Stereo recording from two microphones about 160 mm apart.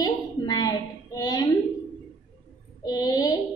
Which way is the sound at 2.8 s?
25° left (ahead or behind).